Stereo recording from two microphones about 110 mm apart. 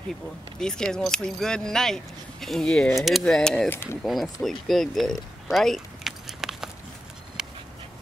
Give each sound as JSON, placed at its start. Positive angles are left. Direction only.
{"t": 0.6, "sound": "speech", "side_deg": 5}
{"t": 3.7, "sound": "speech", "side_deg": 20}
{"t": 4.0, "sound": "speech", "side_deg": 0}
{"t": 7.4, "sound": "dog", "side_deg": -5}